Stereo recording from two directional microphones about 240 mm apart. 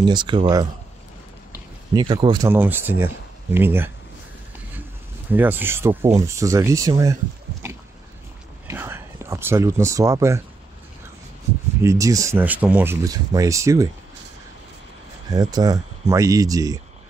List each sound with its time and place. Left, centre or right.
0.0 s speech: centre
2.0 s speech: centre
5.3 s speech: centre
7.6 s a sound: centre
8.6 s whispering: centre
11.8 s speech: centre
15.2 s speech: centre